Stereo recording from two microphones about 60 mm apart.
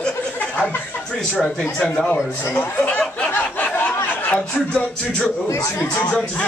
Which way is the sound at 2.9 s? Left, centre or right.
Left.